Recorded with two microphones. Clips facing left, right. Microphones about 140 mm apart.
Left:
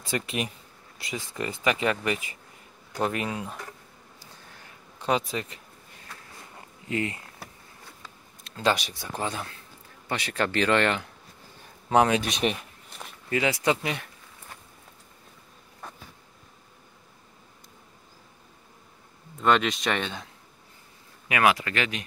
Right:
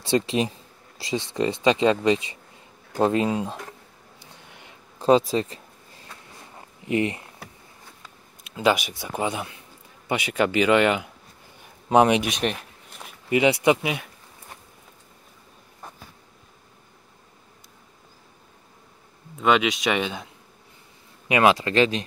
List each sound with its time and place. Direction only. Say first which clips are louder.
0.0 s speech: right 8 dB; 30° right (ahead or behind)
4.9 s a sound: right 8 dB; 30° right (ahead or behind)
6.9 s speech: right 6 dB; 20° right (ahead or behind)
8.5 s speech: right 4 dB; 10° right (ahead or behind)
12.3 s speech: right 1 dB; centre (ahead or behind)
13.3 s speech: right 6 dB; 20° right (ahead or behind)
19.4 s speech: right 2 dB; 5° right (ahead or behind)
21.3 s speech: right 4 dB; 25° right (ahead or behind)